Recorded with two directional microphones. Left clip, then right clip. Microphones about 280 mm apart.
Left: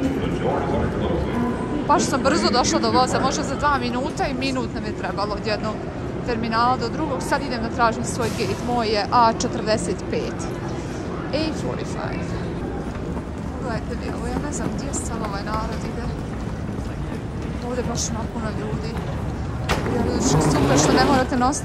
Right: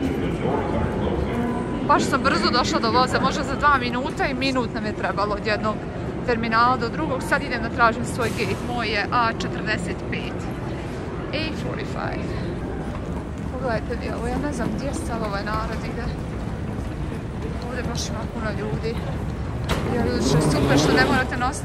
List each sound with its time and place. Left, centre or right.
1.9 s speech: centre
20.1 s speech: centre